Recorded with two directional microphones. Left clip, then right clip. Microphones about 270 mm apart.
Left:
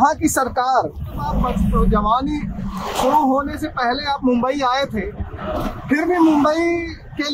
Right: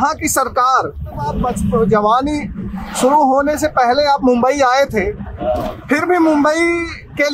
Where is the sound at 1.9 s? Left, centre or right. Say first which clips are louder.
Right 4 dB; centre.